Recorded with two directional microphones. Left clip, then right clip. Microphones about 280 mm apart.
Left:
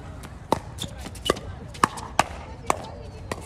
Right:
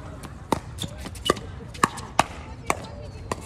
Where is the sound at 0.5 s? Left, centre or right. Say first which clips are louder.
Left 1 dB; centre.